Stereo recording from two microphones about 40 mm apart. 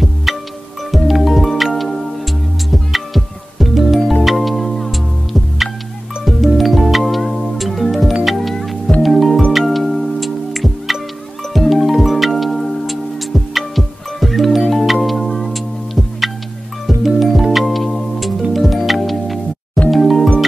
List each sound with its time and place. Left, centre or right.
0.0 s music: centre
6.2 s music: centre